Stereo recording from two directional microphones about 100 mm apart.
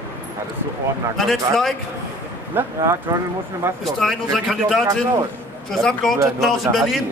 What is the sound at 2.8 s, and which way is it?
Speech, 35° right (ahead or behind).